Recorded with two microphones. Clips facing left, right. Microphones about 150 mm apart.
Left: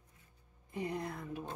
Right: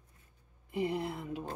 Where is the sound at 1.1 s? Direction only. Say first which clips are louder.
Right 3 dB; 10° right (ahead or behind).